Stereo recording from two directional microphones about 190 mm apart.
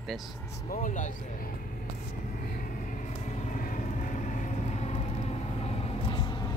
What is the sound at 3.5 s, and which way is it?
Vehicle, 45° left (ahead or behind).